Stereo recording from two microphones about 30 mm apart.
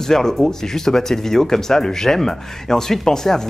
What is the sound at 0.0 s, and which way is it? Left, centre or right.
Speech, centre.